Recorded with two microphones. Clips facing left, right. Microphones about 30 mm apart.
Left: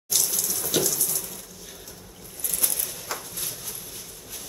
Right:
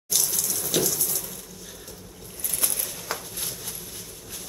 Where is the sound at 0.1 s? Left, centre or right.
Centre.